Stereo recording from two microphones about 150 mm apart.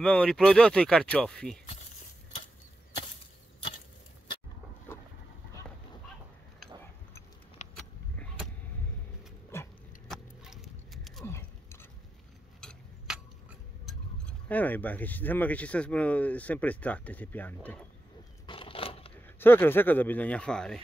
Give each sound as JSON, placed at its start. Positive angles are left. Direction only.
{"t": 0.0, "sound": "speech", "side_deg": 5}
{"t": 7.6, "sound": "vehicle", "side_deg": 50}
{"t": 9.5, "sound": "dog", "side_deg": 15}
{"t": 10.0, "sound": "horse", "side_deg": 0}
{"t": 11.2, "sound": "a sound", "side_deg": 15}
{"t": 12.5, "sound": "tick-tock", "side_deg": 0}
{"t": 13.8, "sound": "speech", "side_deg": 10}
{"t": 18.5, "sound": "a sound", "side_deg": 35}
{"t": 19.2, "sound": "speech", "side_deg": 15}